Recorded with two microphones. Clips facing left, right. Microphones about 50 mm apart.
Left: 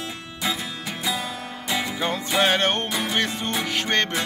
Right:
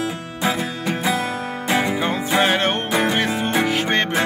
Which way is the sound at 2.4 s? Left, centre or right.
Centre.